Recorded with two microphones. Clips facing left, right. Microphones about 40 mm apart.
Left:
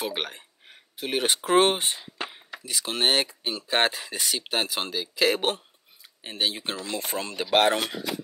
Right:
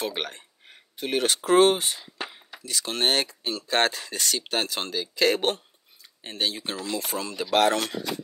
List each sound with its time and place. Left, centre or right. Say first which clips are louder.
0.0 s a sound: even; centre
1.2 s speech: right 2 dB; centre
7.1 s speech: left 3 dB; left
7.8 s speech: even; centre